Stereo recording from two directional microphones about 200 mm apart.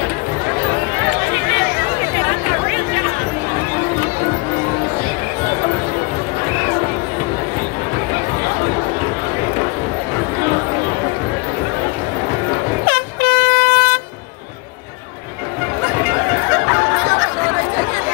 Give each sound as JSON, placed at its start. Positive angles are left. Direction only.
{"t": 12.8, "sound": "air horn", "side_deg": -55}